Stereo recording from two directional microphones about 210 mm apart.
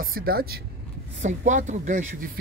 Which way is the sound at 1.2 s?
35° right (ahead or behind).